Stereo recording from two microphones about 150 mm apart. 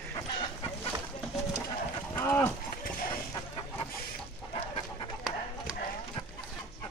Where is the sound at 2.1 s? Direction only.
15° left (ahead or behind).